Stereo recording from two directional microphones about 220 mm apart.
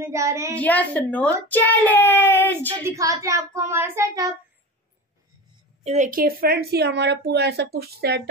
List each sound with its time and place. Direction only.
0.0 s speech: 15° right (ahead or behind)
0.6 s a child's voice: 5° left (ahead or behind)
2.8 s child singing: 15° right (ahead or behind)
5.9 s speech: 35° right (ahead or behind)